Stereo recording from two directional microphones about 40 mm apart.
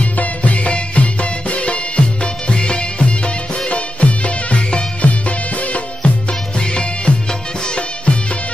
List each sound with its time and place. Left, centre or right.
0.0 s music: left